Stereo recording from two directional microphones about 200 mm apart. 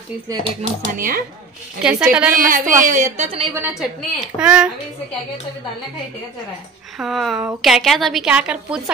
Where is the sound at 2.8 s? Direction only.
40° right (ahead or behind).